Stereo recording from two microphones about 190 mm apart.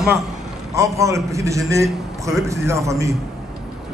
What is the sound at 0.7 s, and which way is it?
A man's voice, 15° right (ahead or behind).